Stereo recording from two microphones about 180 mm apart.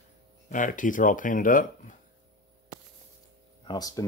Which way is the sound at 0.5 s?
45° left (ahead or behind).